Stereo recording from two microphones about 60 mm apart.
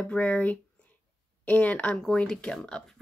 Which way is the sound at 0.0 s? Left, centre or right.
Left.